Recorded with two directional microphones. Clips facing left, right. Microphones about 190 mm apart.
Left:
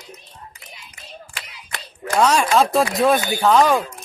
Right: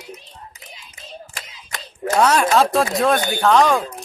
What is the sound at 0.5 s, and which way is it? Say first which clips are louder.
Tap: right 1 dB; 20° right (ahead or behind).